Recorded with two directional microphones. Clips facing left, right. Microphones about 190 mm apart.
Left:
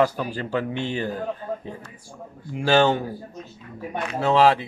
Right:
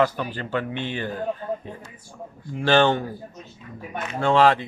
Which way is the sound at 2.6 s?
10° left (ahead or behind).